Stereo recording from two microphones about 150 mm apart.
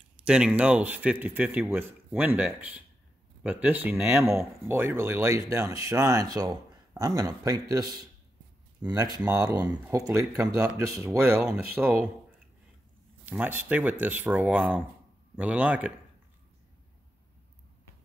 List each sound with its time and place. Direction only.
0.3 s speech: 5° right (ahead or behind)
13.2 s speech: 10° right (ahead or behind)